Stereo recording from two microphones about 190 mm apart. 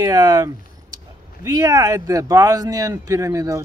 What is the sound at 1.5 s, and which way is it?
Speech, 20° right (ahead or behind).